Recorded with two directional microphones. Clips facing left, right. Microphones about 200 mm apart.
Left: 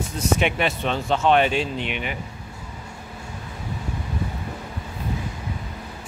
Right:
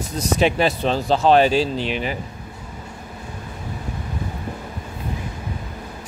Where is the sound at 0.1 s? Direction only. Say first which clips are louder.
Right 4 dB; 35° right (ahead or behind).